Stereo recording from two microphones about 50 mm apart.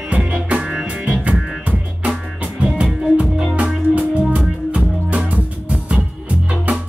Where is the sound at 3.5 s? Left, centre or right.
Right.